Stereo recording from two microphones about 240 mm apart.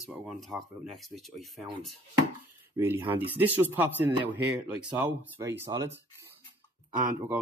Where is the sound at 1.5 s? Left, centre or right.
Centre.